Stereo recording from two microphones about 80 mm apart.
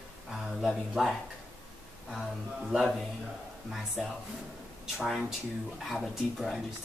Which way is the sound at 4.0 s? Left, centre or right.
Centre.